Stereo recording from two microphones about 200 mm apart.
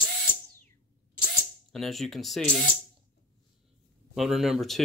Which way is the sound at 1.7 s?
Centre (ahead or behind).